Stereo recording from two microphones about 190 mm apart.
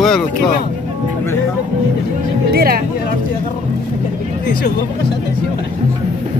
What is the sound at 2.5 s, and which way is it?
Speech, 50° right (ahead or behind).